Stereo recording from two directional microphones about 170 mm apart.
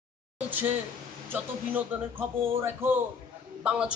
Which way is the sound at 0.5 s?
10° right (ahead or behind).